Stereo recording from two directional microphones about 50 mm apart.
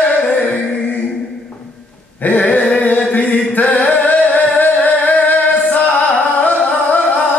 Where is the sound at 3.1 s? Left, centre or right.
Left.